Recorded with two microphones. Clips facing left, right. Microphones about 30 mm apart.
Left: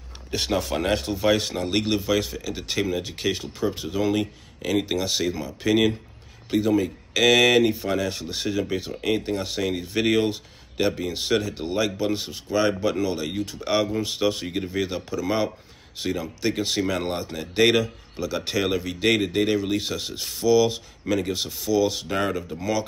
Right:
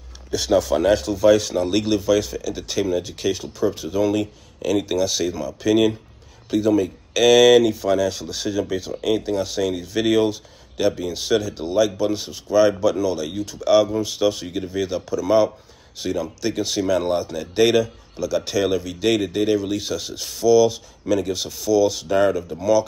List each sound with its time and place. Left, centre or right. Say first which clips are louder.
0.3 s speech: right 6 dB; left
7.4 s speech: right 5 dB; left
13.4 s speech: right 1 dB; left
13.9 s speech: right 3 dB; centre